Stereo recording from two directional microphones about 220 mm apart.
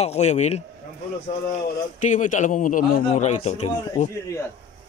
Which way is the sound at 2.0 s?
35° left (ahead or behind).